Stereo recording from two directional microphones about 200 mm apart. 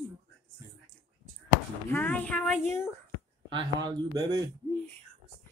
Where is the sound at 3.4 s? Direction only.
25° right (ahead or behind).